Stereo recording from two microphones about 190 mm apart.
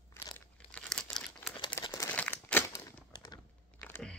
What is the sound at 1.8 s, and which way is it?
Crumpling, 15° left (ahead or behind).